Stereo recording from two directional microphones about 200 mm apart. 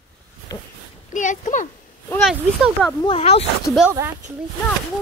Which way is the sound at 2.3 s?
Centre (ahead or behind).